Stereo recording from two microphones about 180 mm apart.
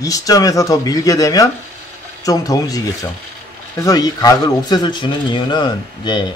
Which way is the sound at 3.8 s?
20° left (ahead or behind).